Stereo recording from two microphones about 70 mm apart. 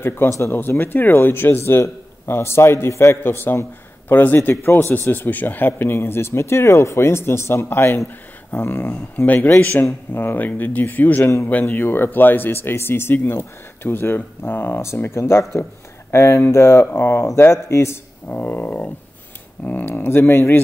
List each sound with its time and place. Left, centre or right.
0.0 s speech: left
8.8 s speech: centre; by 17.9 s left
18.3 s speech: left
19.9 s speech: left